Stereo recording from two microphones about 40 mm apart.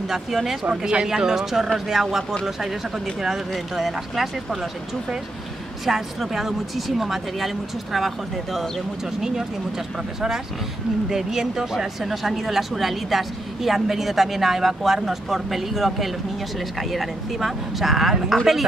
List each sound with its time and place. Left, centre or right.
0.1 s speech: centre
0.7 s speech: right
3.5 s speech: centre
5.9 s speech: centre
9.2 s speech: centre
11.1 s speech: centre